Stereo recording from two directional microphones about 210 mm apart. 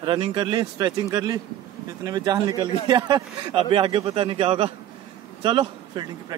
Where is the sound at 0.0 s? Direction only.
25° right (ahead or behind).